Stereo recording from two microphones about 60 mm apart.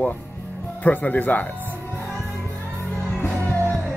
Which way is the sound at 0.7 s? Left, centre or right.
Left.